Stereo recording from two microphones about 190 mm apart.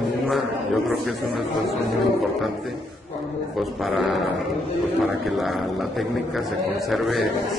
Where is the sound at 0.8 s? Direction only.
Centre (ahead or behind).